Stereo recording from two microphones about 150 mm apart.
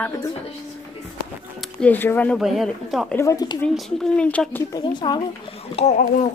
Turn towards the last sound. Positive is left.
turn(degrees=45)  # may be behind; listen again after turning